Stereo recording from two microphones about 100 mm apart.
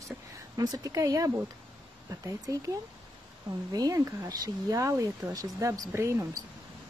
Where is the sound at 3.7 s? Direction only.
35° right (ahead or behind).